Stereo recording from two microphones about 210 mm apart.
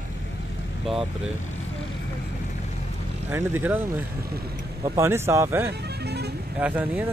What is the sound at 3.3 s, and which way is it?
Speech, 10° right (ahead or behind).